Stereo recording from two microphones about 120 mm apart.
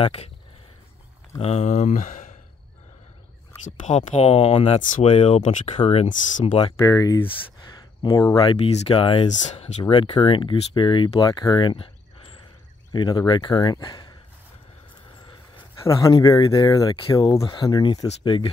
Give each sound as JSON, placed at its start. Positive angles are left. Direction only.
{"t": 0.0, "sound": "speech", "side_deg": 55}
{"t": 1.4, "sound": "speech", "side_deg": 70}
{"t": 3.6, "sound": "speech", "side_deg": 80}
{"t": 5.8, "sound": "speech", "side_deg": 55}
{"t": 6.9, "sound": "speech", "side_deg": 30}
{"t": 7.2, "sound": "speech", "side_deg": 40}
{"t": 8.5, "sound": "speech", "side_deg": 60}
{"t": 9.3, "sound": "speech", "side_deg": 80}
{"t": 9.8, "sound": "speech", "side_deg": 45}
{"t": 12.9, "sound": "speech", "side_deg": 35}
{"t": 15.9, "sound": "speech", "side_deg": 35}